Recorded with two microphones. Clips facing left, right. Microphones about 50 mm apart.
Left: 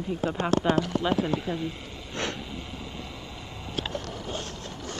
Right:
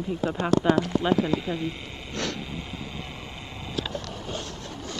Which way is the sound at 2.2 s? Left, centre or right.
Left.